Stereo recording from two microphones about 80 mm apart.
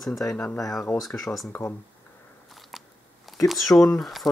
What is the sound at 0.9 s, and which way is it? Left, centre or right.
Speech, left.